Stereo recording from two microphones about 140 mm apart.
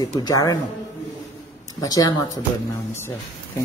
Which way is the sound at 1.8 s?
25° left (ahead or behind).